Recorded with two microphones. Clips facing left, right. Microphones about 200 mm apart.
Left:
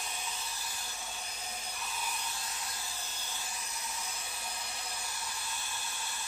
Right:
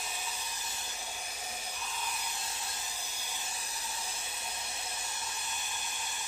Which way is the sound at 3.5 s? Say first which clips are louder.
Even; 30° right (ahead or behind).